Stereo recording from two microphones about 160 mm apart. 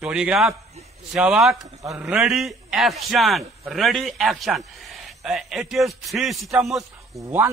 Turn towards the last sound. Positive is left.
turn(degrees=-15)  # may be behind; listen again after turning